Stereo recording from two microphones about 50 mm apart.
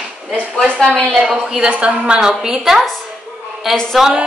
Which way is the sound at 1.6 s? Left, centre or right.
Right.